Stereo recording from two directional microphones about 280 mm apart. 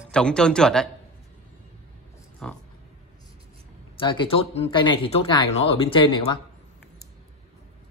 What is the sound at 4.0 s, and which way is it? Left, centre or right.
Speech, centre.